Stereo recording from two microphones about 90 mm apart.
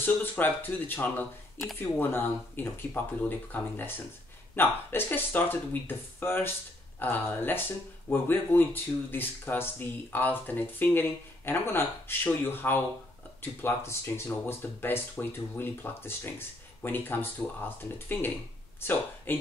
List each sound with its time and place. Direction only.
0.0 s speech: 20° left (ahead or behind)